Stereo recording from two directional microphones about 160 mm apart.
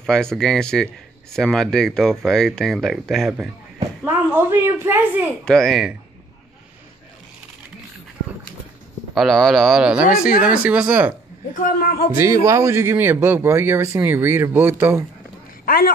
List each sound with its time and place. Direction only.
0.0 s speech: 5° left (ahead or behind)
4.0 s a man's voice: 15° right (ahead or behind)
5.4 s speech: 5° left (ahead or behind)
9.1 s a man's voice: centre (ahead or behind)
11.5 s a man's voice: 60° left (ahead or behind)
12.1 s a man's voice: 15° right (ahead or behind)
15.6 s a man's voice: 65° left (ahead or behind)